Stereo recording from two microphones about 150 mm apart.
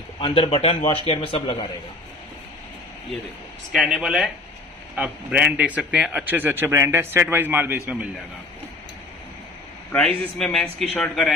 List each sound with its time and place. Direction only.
0.2 s a man's voice: 35° left (ahead or behind)
3.7 s a man's voice: 5° right (ahead or behind)
9.9 s a man's voice: 5° left (ahead or behind)